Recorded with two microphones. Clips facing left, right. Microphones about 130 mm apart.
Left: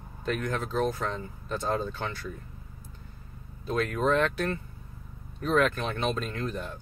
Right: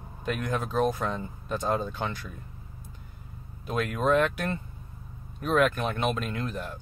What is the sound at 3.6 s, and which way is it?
Speech, 10° right (ahead or behind).